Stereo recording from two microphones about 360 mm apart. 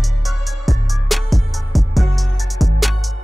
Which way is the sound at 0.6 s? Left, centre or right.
Centre.